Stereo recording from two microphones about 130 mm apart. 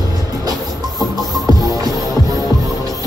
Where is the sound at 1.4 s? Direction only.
30° right (ahead or behind).